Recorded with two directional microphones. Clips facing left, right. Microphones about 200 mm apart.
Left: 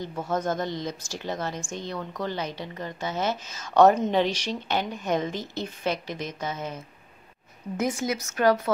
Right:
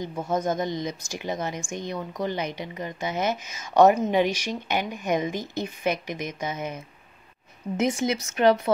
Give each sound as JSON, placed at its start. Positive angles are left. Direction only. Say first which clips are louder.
{"t": 0.3, "sound": "speech", "louder": "right 2 dB", "side_deg": -15}